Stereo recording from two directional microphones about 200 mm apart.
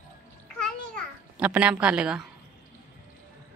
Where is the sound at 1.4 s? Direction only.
5° right (ahead or behind).